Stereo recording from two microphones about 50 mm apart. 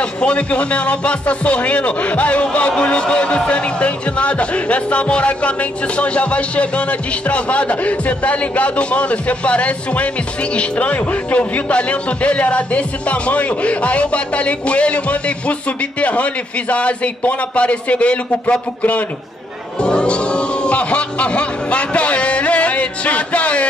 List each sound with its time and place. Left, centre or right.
0.0 s speech: left
19.8 s music: centre